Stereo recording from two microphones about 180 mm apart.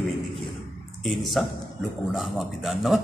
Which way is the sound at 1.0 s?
Centre (ahead or behind).